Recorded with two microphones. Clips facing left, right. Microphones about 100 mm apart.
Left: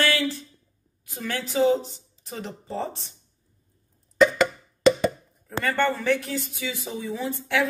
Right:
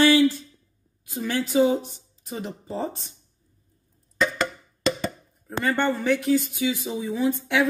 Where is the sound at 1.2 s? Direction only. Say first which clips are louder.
Right 2 dB; 15° right (ahead or behind).